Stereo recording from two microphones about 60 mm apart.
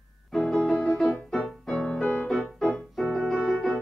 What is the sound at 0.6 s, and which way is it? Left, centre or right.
Keyboard, left.